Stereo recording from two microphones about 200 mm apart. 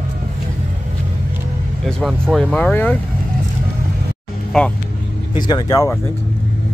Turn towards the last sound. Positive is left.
turn(degrees=20)  # may be behind; listen again after turning